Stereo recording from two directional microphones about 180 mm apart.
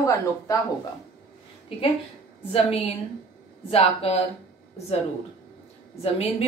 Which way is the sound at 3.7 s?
35° left (ahead or behind).